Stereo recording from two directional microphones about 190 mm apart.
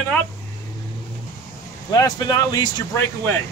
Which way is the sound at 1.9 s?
20° left (ahead or behind).